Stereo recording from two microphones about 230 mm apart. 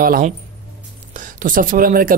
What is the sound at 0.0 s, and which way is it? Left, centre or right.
Speech, right.